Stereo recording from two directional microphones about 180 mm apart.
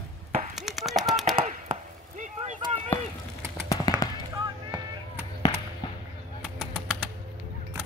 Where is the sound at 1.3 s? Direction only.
45° right (ahead or behind).